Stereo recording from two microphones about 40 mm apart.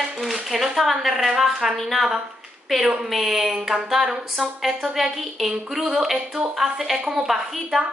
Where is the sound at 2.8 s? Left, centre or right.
Centre.